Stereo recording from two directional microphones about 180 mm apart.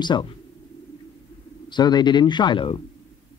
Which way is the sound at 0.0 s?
25° left (ahead or behind).